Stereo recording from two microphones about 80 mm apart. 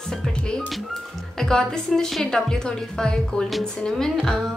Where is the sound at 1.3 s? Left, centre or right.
Centre.